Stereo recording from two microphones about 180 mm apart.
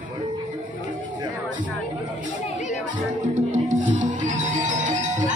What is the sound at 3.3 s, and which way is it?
Music, 45° right (ahead or behind).